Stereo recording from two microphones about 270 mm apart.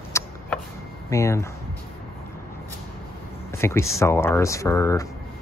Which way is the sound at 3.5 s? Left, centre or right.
Centre.